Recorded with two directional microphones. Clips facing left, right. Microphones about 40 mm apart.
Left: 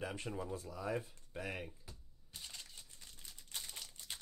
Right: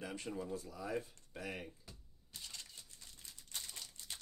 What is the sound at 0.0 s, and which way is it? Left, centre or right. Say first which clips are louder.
Speech: left 1 dB; centre.